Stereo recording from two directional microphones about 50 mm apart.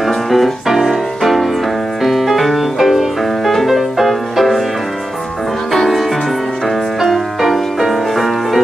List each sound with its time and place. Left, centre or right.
0.0 s music: centre
5.7 s music: centre